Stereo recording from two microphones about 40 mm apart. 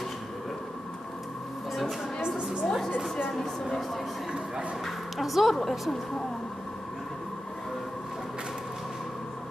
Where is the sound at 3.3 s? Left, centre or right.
Centre.